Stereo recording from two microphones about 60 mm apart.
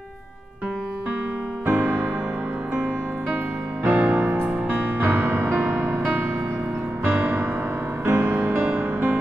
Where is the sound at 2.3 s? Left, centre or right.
Right.